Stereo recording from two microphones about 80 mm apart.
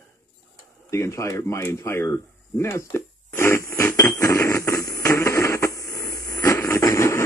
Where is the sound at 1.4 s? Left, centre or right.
Left.